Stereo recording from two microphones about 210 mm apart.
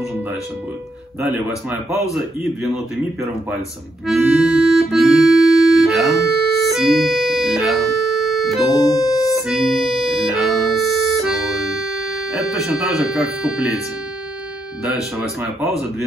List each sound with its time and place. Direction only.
2.1 s a man's voice: centre (ahead or behind)
4.1 s music: 5° right (ahead or behind)
5.8 s organ: centre (ahead or behind)
8.7 s organ: 15° left (ahead or behind)
9.3 s organ: centre (ahead or behind)
12.4 s a man's voice: centre (ahead or behind)
15.1 s a man's voice: centre (ahead or behind)